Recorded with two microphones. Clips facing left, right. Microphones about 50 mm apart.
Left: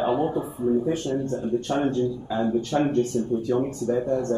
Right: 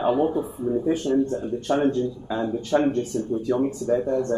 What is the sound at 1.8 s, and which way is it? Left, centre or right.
Speech, centre.